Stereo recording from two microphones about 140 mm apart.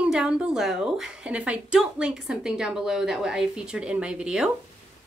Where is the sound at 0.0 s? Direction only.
5° right (ahead or behind).